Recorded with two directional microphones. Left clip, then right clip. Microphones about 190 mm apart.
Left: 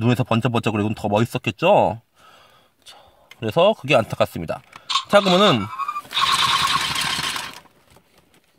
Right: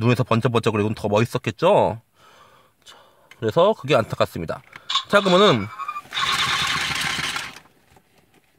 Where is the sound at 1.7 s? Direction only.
Centre (ahead or behind).